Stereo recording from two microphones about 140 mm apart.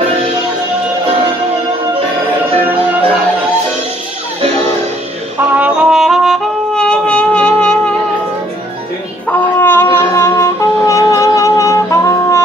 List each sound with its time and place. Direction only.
5.5 s brass instrument: 5° right (ahead or behind)
9.6 s music: 15° left (ahead or behind)